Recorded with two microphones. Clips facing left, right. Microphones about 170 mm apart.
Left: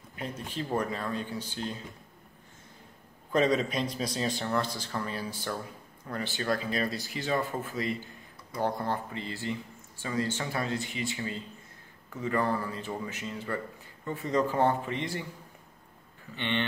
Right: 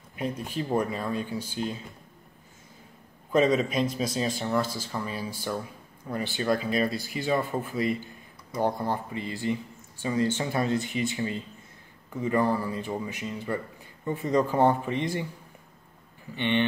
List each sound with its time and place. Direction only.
0.2 s speech: 15° right (ahead or behind)
3.3 s a man's voice: 5° right (ahead or behind)
16.3 s speech: 15° right (ahead or behind)